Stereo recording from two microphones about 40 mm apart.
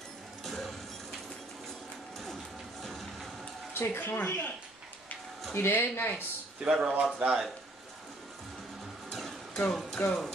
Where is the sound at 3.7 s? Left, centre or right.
Left.